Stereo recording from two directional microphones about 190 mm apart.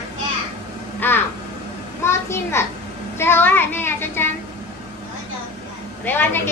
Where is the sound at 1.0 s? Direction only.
10° left (ahead or behind).